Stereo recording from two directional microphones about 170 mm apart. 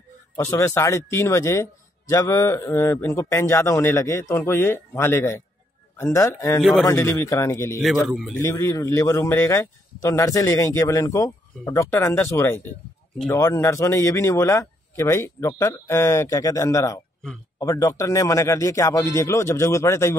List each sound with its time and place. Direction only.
0.4 s a man's voice: 15° left (ahead or behind)
6.6 s a man's voice: centre (ahead or behind)
6.9 s a man's voice: 15° left (ahead or behind)
7.8 s a man's voice: centre (ahead or behind)
8.4 s a man's voice: 15° left (ahead or behind)